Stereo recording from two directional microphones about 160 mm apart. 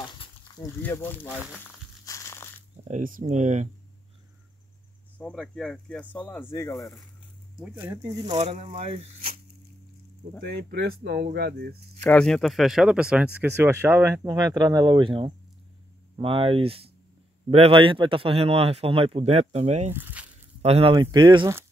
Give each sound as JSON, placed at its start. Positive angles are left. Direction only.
{"t": 0.0, "sound": "a sound", "side_deg": 30}
{"t": 0.8, "sound": "speech", "side_deg": 15}
{"t": 2.0, "sound": "crushing", "side_deg": 20}
{"t": 2.9, "sound": "speech", "side_deg": -50}
{"t": 5.2, "sound": "speech", "side_deg": 5}
{"t": 8.1, "sound": "speech", "side_deg": -30}
{"t": 8.4, "sound": "a man's voice", "side_deg": -40}
{"t": 10.4, "sound": "speech", "side_deg": -80}
{"t": 11.3, "sound": "speech", "side_deg": -80}
{"t": 12.0, "sound": "a man's voice", "side_deg": 5}
{"t": 19.9, "sound": "a sound", "side_deg": -10}
{"t": 20.6, "sound": "a man's voice", "side_deg": -40}
{"t": 20.9, "sound": "speech", "side_deg": -30}